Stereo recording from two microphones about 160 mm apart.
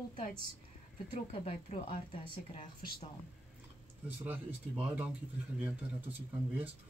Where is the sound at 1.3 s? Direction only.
40° left (ahead or behind).